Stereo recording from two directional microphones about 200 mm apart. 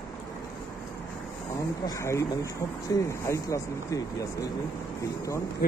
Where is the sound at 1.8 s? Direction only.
15° left (ahead or behind).